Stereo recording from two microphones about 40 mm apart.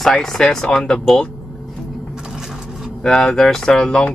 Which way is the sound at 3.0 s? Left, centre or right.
Centre.